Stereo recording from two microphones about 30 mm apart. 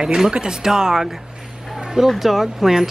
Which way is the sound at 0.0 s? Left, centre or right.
Right.